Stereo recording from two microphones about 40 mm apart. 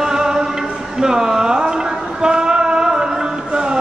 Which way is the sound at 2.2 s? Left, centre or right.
Centre.